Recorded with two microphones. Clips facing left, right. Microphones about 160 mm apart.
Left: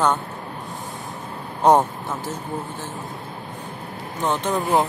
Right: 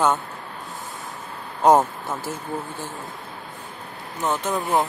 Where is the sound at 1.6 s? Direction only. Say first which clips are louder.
Even; centre (ahead or behind).